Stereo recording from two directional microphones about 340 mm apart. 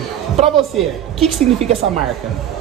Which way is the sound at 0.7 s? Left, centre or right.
Centre.